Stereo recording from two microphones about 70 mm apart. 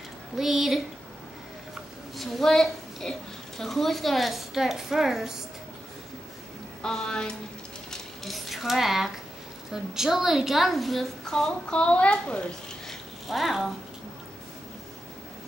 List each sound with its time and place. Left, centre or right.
0.4 s a woman's voice: centre
2.1 s a woman's voice: centre
6.8 s speech: centre
7.9 s a woman's voice: centre
11.7 s a child's voice: centre
13.3 s a woman's voice: centre